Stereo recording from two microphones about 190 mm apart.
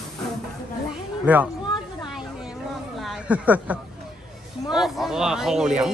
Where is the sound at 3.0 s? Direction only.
10° right (ahead or behind).